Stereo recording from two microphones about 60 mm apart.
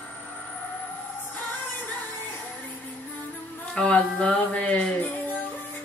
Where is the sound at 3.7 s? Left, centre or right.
Centre.